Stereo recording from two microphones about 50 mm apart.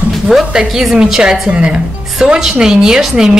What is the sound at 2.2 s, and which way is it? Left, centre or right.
Speech, centre.